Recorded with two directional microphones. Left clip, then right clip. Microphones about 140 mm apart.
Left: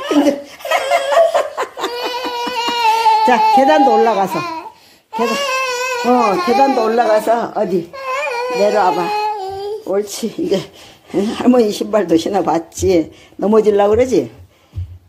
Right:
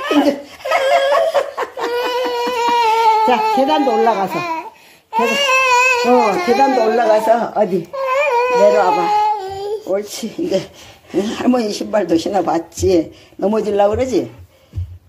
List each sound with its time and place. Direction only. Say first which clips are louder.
0.0 s laughter: left 1 dB; 20° left (ahead or behind)
5.1 s baby cry: right 3 dB; 10° left (ahead or behind)
6.0 s speech: even; 25° left (ahead or behind); by 14.2 s 40° left (ahead or behind)